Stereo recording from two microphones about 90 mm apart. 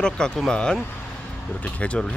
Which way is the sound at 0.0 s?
10° left (ahead or behind).